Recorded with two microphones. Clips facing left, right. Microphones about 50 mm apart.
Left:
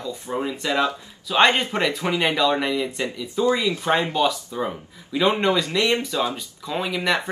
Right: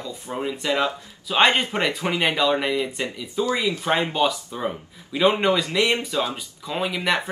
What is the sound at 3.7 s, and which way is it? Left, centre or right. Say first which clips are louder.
Speech: left 1 dB; right.